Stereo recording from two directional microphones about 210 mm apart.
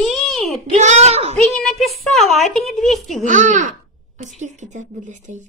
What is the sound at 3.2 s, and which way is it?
Speech, 35° right (ahead or behind).